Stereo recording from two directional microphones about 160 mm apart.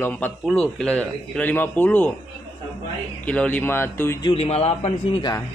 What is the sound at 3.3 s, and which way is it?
Speech, 10° left (ahead or behind).